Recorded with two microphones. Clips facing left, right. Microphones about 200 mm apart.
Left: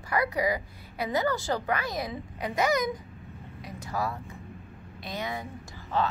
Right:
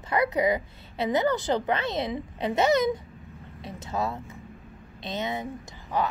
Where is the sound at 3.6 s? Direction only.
25° right (ahead or behind).